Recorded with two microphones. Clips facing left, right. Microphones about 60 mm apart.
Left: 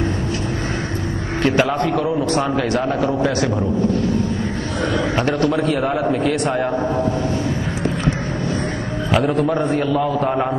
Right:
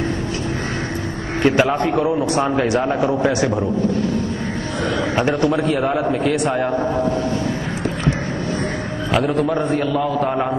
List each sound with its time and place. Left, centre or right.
1.4 s a man's voice: centre
5.1 s a man's voice: centre
5.5 s a man's voice: centre
9.1 s a man's voice: centre